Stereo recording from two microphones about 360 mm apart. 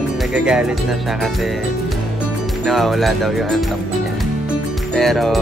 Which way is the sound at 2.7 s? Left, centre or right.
Centre.